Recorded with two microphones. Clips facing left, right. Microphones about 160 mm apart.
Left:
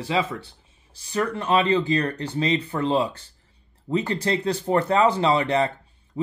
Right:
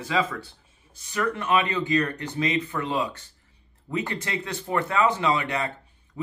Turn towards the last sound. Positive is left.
turn(degrees=35)  # may be behind; listen again after turning